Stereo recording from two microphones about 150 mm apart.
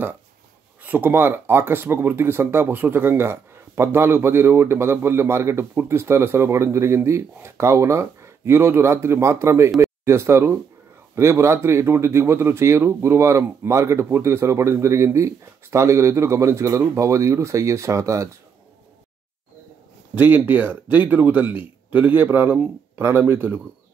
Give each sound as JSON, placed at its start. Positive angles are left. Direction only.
{"t": 0.8, "sound": "a man's voice", "side_deg": -15}
{"t": 20.2, "sound": "speech", "side_deg": -10}